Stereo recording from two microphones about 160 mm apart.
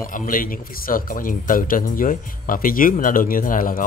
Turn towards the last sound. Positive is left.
turn(degrees=60)  # may be behind; listen again after turning